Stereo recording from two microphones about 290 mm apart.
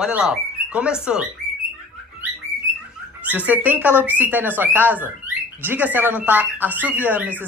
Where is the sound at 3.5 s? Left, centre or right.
Centre.